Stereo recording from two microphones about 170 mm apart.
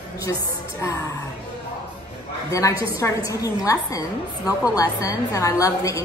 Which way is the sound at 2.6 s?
20° left (ahead or behind).